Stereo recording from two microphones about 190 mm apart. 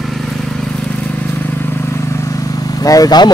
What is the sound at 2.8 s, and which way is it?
Speech, 20° left (ahead or behind).